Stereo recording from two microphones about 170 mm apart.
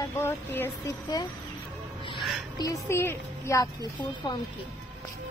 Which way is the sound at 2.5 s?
20° left (ahead or behind).